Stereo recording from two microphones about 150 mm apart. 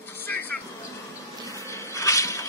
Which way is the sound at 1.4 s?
20° left (ahead or behind).